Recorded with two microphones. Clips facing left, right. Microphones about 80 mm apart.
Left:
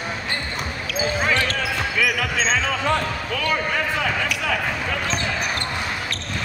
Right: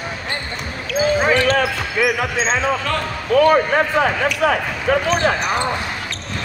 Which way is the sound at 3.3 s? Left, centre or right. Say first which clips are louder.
Right 13 dB; right.